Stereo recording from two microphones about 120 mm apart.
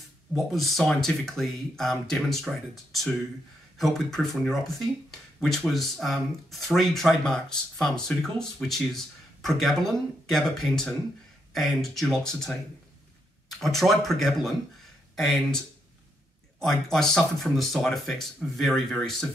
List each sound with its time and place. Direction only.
0.5 s speech: centre (ahead or behind)
16.6 s speech: 5° left (ahead or behind)